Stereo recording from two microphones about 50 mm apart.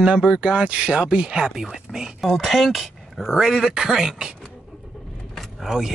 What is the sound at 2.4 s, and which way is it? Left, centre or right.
Speech, centre.